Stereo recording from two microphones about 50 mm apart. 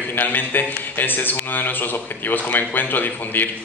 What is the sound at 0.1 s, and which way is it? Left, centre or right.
A man's voice, left.